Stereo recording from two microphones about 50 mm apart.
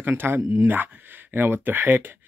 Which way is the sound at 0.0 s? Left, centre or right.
Right.